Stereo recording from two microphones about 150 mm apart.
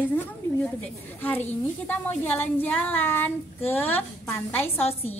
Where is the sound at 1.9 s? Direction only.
10° left (ahead or behind).